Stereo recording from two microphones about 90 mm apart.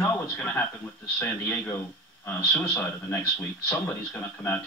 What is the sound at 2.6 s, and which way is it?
A man's voice, 15° left (ahead or behind).